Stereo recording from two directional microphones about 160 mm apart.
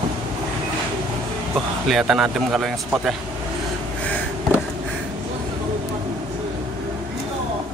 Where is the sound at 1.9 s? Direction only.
Centre (ahead or behind).